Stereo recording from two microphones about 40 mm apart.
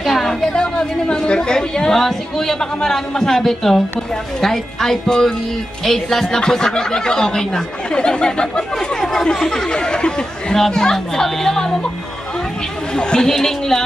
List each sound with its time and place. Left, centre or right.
0.0 s chatter: centre
2.0 s speech: centre
12.9 s speech: centre